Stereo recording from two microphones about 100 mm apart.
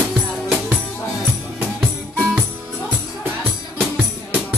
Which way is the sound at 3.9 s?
15° right (ahead or behind).